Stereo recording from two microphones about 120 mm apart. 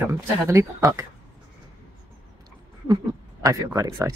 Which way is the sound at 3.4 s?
25° right (ahead or behind).